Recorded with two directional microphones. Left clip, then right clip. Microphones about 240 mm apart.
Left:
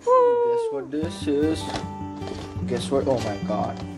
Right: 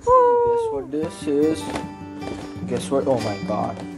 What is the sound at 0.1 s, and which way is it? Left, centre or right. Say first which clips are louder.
Music: right 3 dB; centre.